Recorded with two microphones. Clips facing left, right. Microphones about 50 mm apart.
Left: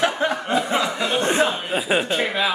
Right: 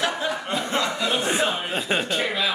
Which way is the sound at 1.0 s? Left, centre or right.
Centre.